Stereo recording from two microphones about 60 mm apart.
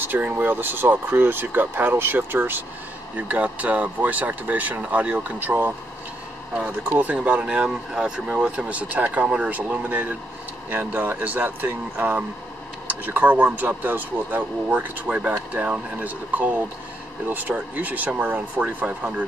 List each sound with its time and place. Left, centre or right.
0.0 s speech: right
3.2 s speech: right
6.5 s speech: centre